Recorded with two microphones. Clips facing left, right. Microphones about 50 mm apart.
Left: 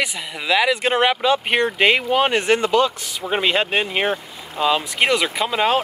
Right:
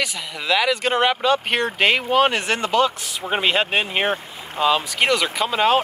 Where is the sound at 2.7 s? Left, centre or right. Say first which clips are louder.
Left 1 dB; right.